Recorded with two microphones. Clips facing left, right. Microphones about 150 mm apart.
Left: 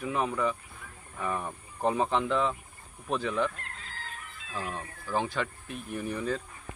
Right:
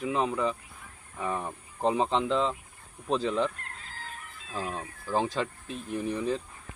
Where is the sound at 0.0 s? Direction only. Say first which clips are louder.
Right 1 dB; 25° right (ahead or behind).